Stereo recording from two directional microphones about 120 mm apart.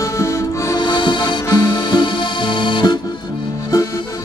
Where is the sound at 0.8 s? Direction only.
40° left (ahead or behind).